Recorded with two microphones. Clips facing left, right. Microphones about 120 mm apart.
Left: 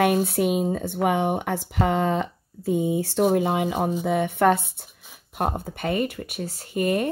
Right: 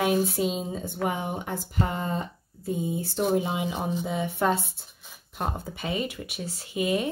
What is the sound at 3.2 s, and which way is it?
Speech, 60° left (ahead or behind).